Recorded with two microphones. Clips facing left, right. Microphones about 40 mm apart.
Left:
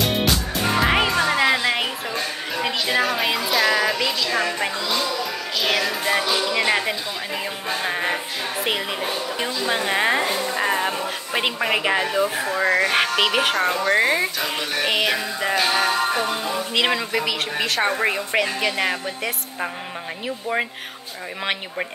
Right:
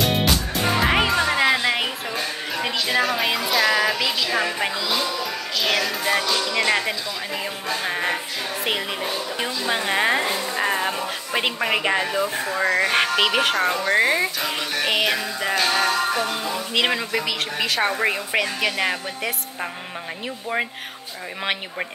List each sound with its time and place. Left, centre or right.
0.0 s music: centre
7.7 s a woman's voice: centre